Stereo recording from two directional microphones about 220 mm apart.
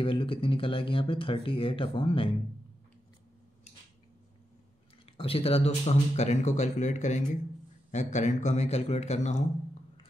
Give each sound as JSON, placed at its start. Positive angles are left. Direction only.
{"t": 0.0, "sound": "speech", "side_deg": 25}
{"t": 5.0, "sound": "speech", "side_deg": 25}